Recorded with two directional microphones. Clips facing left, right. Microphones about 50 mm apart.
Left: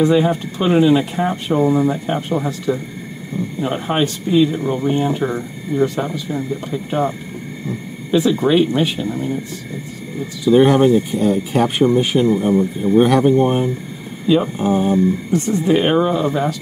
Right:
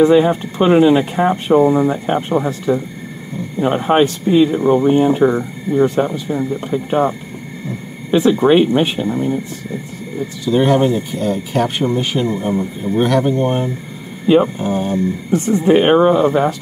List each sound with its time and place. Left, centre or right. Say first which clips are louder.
0.0 s speech: right 4 dB; right
8.1 s speech: right 3 dB; right
10.4 s speech: left 2 dB; centre
11.8 s speech: left 3 dB; centre
12.5 s speech: left 4 dB; centre
14.2 s speech: right 4 dB; right
14.6 s speech: left 2 dB; centre
15.3 s speech: right 6 dB; right